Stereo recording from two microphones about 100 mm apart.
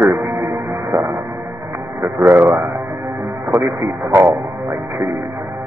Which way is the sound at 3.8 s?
25° right (ahead or behind).